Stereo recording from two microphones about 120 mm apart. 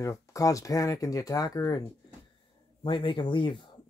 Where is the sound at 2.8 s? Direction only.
45° left (ahead or behind).